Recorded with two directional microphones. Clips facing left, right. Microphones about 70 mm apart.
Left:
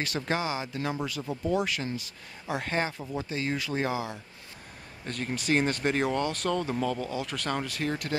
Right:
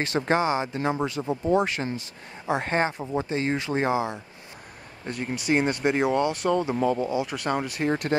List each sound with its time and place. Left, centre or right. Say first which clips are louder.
0.0 s speech: right 7 dB; right
5.0 s speech: right 3 dB; centre
7.9 s speech: right 8 dB; right